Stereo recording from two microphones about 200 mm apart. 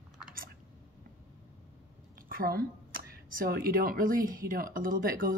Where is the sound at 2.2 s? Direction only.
45° right (ahead or behind).